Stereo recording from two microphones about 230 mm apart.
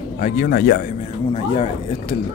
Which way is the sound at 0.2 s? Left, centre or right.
Left.